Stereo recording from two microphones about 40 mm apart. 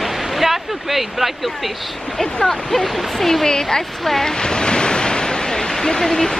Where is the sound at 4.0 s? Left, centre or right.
Centre.